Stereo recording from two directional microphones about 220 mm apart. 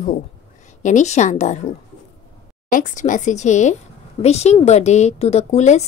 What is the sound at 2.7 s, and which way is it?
A woman's voice, 35° left (ahead or behind).